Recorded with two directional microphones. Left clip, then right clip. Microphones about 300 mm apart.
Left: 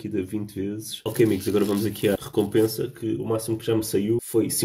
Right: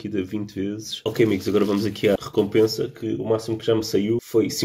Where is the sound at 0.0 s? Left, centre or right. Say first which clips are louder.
Right 1 dB; centre.